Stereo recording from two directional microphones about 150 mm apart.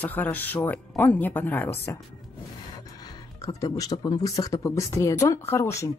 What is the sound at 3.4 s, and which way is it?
Speech, 25° left (ahead or behind).